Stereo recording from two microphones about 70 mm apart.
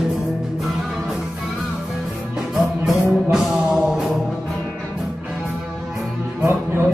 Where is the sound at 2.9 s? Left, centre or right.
Centre.